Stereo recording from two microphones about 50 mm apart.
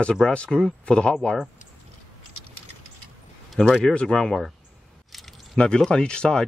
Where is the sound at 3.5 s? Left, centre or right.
Centre.